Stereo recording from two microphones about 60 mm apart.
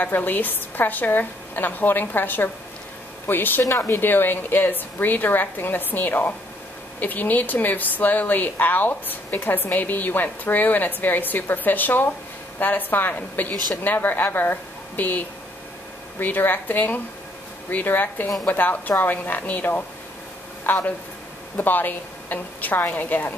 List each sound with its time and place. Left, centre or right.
0.0 s a woman's voice: left